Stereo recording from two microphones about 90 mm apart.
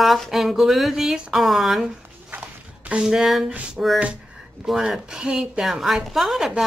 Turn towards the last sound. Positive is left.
turn(degrees=-5)  # may be behind; listen again after turning